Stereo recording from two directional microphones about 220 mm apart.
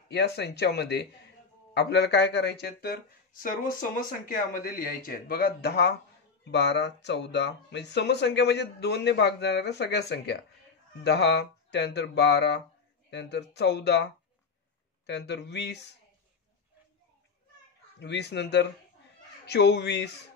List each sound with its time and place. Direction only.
0.1 s speech: 50° left (ahead or behind)
15.0 s speech: 50° left (ahead or behind)
17.9 s speech: 50° left (ahead or behind)